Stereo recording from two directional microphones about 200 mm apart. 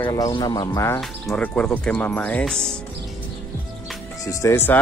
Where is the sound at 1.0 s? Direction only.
5° left (ahead or behind).